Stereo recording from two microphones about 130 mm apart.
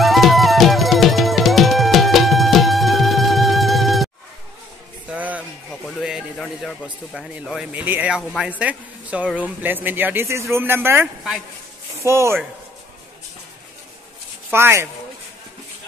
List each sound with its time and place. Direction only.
0.0 s music: centre (ahead or behind)
5.1 s a sound: 10° right (ahead or behind); by 7.2 s 5° left (ahead or behind)
7.2 s a man's voice: 5° right (ahead or behind); by 12.4 s 20° right (ahead or behind)
14.5 s speech: 20° right (ahead or behind)